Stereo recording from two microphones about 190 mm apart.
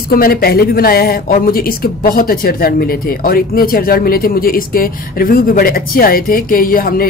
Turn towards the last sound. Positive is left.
turn(degrees=50)  # may be behind; listen again after turning